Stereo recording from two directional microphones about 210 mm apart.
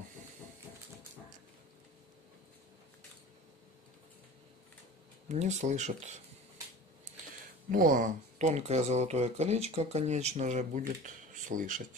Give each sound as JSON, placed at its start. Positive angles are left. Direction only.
{"t": 5.3, "sound": "speech", "side_deg": -30}
{"t": 7.7, "sound": "speech", "side_deg": -40}